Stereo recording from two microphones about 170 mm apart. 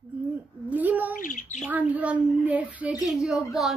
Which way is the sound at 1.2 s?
50° left (ahead or behind).